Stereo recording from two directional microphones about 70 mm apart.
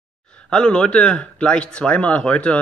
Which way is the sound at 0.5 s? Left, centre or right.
Centre.